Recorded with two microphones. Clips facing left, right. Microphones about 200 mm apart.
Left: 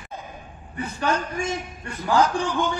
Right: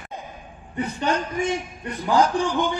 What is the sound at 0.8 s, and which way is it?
A man's voice, 20° right (ahead or behind).